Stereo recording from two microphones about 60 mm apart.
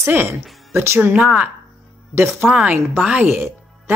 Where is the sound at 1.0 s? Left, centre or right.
Centre.